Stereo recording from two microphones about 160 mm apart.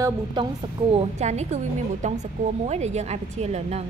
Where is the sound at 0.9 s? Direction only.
45° right (ahead or behind).